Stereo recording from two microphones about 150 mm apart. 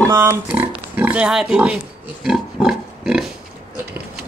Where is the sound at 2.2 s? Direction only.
5° right (ahead or behind).